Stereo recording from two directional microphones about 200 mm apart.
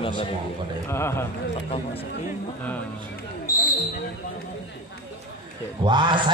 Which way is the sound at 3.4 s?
15° left (ahead or behind).